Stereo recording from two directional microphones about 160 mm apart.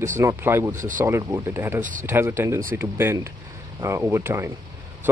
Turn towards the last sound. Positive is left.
turn(degrees=-15)  # may be behind; listen again after turning